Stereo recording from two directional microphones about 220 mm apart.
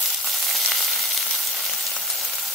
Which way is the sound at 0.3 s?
Centre (ahead or behind).